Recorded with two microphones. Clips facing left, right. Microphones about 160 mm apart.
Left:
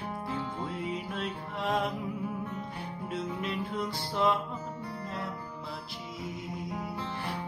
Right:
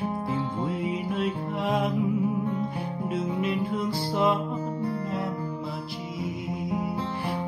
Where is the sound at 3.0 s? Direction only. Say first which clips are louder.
Right 6 dB; 5° right (ahead or behind).